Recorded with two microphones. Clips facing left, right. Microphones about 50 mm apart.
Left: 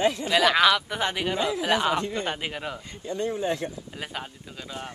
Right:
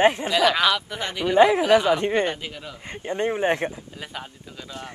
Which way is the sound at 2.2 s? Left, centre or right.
Left.